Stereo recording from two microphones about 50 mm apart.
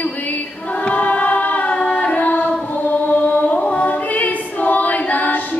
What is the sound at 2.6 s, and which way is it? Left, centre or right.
Choir, left.